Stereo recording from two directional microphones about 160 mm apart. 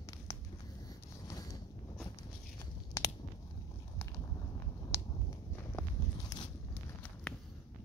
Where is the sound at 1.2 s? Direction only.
20° left (ahead or behind).